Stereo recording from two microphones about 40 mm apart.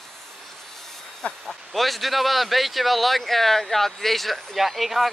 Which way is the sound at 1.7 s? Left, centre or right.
Centre.